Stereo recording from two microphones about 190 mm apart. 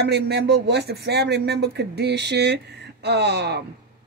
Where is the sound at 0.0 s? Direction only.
60° right (ahead or behind).